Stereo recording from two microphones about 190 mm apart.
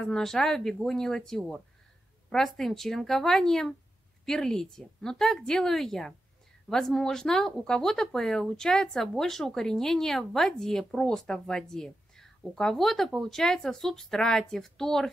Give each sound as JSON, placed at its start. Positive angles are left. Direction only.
{"t": 0.0, "sound": "speech", "side_deg": 0}